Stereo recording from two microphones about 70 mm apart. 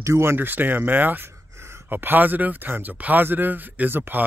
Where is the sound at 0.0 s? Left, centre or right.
Right.